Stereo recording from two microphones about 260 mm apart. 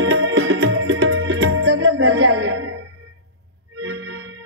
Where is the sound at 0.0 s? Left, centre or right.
Right.